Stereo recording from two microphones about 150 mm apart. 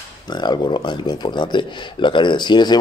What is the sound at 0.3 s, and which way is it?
Speech, 30° left (ahead or behind).